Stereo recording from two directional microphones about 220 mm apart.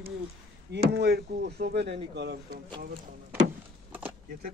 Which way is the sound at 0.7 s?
50° right (ahead or behind).